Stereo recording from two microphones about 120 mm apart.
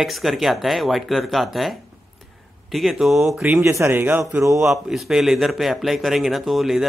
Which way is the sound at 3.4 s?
15° right (ahead or behind).